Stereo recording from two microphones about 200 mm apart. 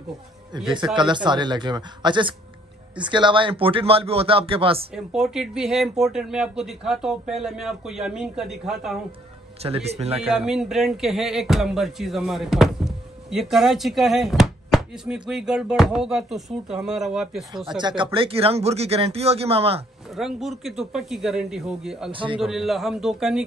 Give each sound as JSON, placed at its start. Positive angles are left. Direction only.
{"t": 0.9, "sound": "speech", "side_deg": -25}
{"t": 4.9, "sound": "speech", "side_deg": 0}
{"t": 9.6, "sound": "speech", "side_deg": -30}
{"t": 10.2, "sound": "speech", "side_deg": -5}
{"t": 17.6, "sound": "speech", "side_deg": -20}
{"t": 20.2, "sound": "speech", "side_deg": 0}
{"t": 22.1, "sound": "speech", "side_deg": -25}
{"t": 22.4, "sound": "speech", "side_deg": 0}